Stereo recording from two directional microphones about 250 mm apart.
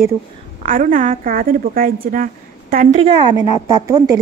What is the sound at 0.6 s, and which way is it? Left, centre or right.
A woman's voice, right.